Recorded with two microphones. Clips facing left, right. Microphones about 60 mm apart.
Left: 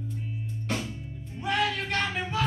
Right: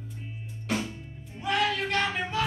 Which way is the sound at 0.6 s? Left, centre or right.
Centre.